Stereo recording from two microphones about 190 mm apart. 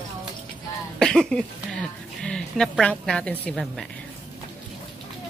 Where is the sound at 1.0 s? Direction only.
5° left (ahead or behind).